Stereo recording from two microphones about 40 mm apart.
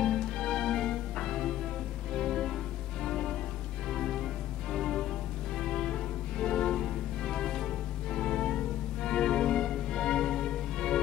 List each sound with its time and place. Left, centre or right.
0.0 s music: centre